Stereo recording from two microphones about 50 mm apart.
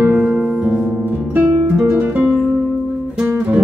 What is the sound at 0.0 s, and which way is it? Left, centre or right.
Music, right.